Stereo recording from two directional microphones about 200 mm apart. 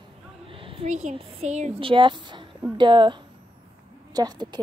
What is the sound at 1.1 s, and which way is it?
Speech, 35° right (ahead or behind).